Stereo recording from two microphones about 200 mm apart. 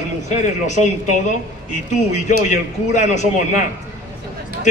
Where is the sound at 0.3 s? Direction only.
35° left (ahead or behind).